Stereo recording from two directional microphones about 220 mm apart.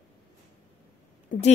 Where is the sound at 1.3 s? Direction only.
35° left (ahead or behind).